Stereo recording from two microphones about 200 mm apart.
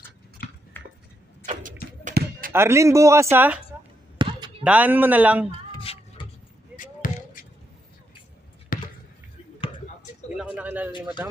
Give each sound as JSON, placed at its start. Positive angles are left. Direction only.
{"t": 0.4, "sound": "a sound", "side_deg": 45}
{"t": 1.4, "sound": "vehicle", "side_deg": -40}
{"t": 2.0, "sound": "basketball bounce", "side_deg": -45}
{"t": 2.5, "sound": "speech", "side_deg": -15}
{"t": 4.2, "sound": "basketball bounce", "side_deg": -25}
{"t": 4.6, "sound": "speech", "side_deg": -10}
{"t": 5.7, "sound": "music", "side_deg": 25}
{"t": 6.8, "sound": "basketball bounce", "side_deg": 40}
{"t": 8.7, "sound": "basketball bounce", "side_deg": 45}
{"t": 10.3, "sound": "a sound", "side_deg": -5}